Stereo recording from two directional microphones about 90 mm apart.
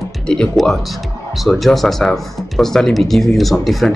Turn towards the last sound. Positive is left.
turn(degrees=0)  # may be behind; listen again after turning